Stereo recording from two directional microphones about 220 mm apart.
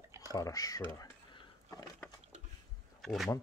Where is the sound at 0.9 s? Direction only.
20° left (ahead or behind).